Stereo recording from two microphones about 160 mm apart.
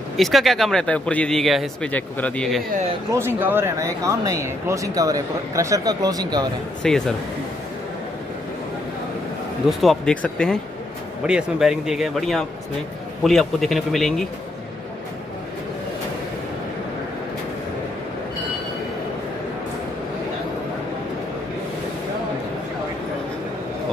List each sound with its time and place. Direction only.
0.2 s speech: centre (ahead or behind)
3.1 s speech: 15° right (ahead or behind)
6.8 s speech: 5° left (ahead or behind)
9.7 s speech: centre (ahead or behind)